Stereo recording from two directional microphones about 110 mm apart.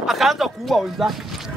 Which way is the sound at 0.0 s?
Centre (ahead or behind).